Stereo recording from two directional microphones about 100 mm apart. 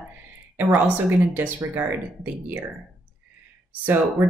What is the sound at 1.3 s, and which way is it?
Speech, 20° right (ahead or behind).